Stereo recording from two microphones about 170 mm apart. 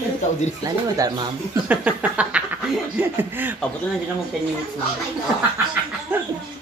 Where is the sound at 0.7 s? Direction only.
20° right (ahead or behind).